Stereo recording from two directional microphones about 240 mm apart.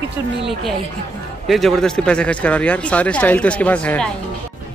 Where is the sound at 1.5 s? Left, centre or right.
Centre.